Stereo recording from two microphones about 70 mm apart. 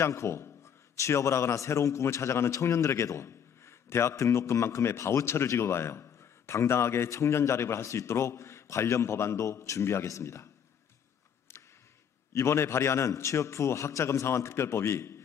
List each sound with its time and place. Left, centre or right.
0.0 s a man's voice: left
12.3 s a man's voice: left